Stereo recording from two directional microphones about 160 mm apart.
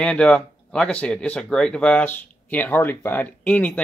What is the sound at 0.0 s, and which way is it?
Speech, 5° left (ahead or behind).